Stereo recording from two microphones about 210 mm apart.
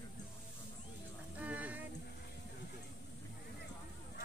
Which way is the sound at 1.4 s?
5° right (ahead or behind).